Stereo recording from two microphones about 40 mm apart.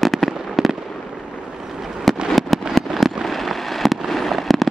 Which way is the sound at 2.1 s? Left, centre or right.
Centre.